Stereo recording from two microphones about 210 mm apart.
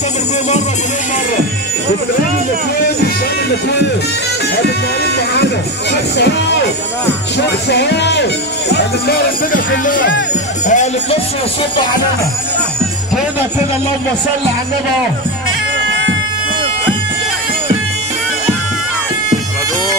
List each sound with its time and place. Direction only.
7.7 s speech: 55° left (ahead or behind)
10.7 s music: 35° left (ahead or behind)